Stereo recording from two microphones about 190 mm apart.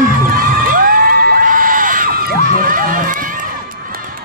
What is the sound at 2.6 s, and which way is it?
Run, 45° right (ahead or behind).